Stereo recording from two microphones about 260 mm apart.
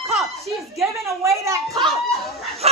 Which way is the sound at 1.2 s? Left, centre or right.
Centre.